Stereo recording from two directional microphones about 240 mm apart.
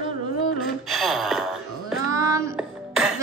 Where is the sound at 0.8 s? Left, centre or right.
Centre.